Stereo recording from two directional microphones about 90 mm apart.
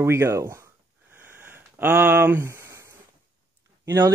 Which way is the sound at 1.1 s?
20° right (ahead or behind).